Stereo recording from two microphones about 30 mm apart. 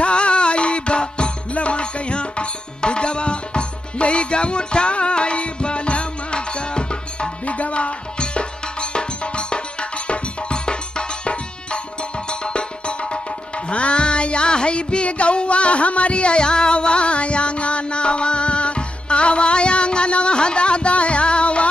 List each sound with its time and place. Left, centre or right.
0.0 s music: left
7.4 s music: left